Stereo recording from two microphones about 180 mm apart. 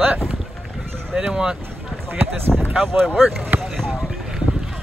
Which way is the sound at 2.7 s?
10° right (ahead or behind).